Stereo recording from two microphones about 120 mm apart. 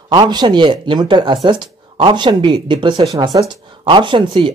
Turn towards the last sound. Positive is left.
turn(degrees=-45)  # may be behind; listen again after turning